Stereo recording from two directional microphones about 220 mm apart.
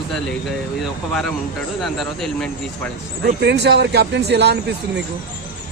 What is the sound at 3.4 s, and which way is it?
Speech, 50° right (ahead or behind).